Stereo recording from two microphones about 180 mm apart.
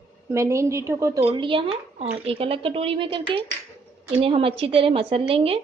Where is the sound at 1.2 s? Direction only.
30° right (ahead or behind).